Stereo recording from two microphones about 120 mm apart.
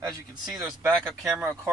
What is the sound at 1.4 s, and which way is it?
Speech, 20° right (ahead or behind).